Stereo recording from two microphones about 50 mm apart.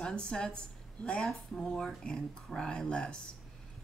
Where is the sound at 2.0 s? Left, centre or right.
Centre.